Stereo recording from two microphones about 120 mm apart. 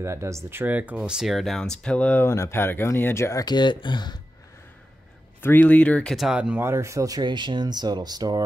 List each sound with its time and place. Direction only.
0.0 s speech: 20° right (ahead or behind); by 2.2 s 10° left (ahead or behind)
2.2 s speech: 20° left (ahead or behind); by 4.2 s 40° left (ahead or behind)
5.4 s speech: 15° left (ahead or behind)
6.1 s speech: 5° right (ahead or behind)
6.6 s speech: 25° right (ahead or behind)